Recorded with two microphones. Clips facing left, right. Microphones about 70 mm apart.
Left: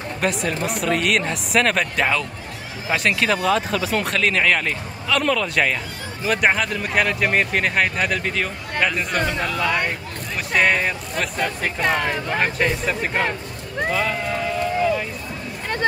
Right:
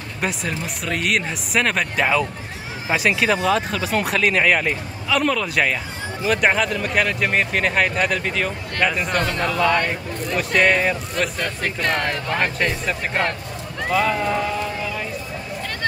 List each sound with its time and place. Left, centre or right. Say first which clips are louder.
0.2 s speech: left 2 dB; centre